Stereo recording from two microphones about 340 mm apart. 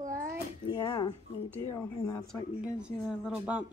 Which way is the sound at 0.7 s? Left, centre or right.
Centre.